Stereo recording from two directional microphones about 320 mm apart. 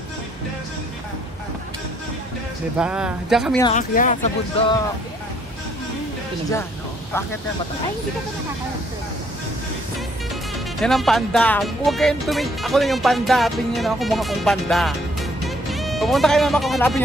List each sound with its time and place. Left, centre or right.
2.8 s speech: centre
3.6 s speech: left
10.8 s speech: centre